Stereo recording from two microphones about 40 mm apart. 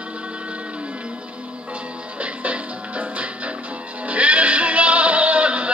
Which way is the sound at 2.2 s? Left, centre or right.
Right.